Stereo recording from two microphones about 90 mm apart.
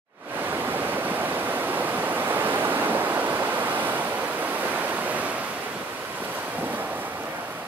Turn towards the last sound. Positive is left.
turn(degrees=-20)  # may be behind; listen again after turning